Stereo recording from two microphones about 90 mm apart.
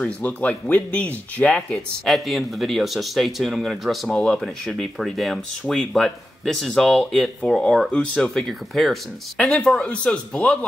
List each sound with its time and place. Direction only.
0.0 s speech: 15° left (ahead or behind)
2.0 s speech: centre (ahead or behind)
9.4 s speech: 15° left (ahead or behind)